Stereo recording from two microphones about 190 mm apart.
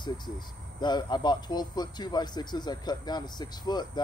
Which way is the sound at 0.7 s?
20° left (ahead or behind).